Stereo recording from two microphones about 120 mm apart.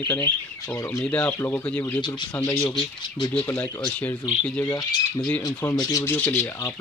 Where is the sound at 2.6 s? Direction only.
40° left (ahead or behind).